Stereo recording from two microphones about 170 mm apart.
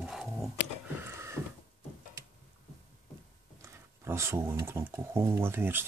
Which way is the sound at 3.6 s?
15° right (ahead or behind).